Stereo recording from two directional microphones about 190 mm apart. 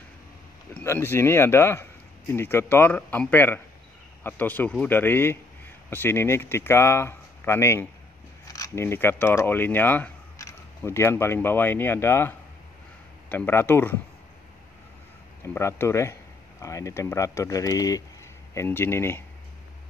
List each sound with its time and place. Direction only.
0.7 s speech: 10° left (ahead or behind)
15.4 s speech: 15° left (ahead or behind)